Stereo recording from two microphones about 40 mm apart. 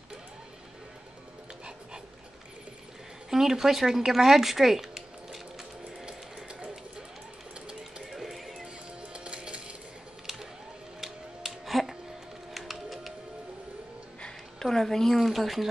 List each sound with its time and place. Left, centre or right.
3.3 s speech: centre
8.1 s music: centre
9.0 s music: right
11.0 s a sound: centre
12.5 s music: centre
14.6 s a sound: centre
15.1 s speech: centre